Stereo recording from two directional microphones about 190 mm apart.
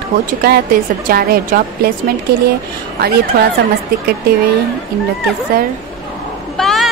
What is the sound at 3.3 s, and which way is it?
Speech, 50° right (ahead or behind).